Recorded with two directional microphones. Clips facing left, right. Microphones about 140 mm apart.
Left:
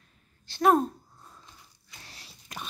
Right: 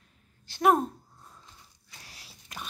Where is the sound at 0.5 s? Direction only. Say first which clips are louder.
Left 1 dB; 15° right (ahead or behind).